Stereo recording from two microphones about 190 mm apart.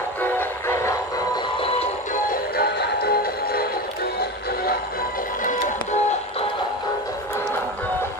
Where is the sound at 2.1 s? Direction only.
50° left (ahead or behind).